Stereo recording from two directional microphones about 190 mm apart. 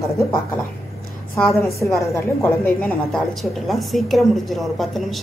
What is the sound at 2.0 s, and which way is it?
A woman's voice, 15° left (ahead or behind).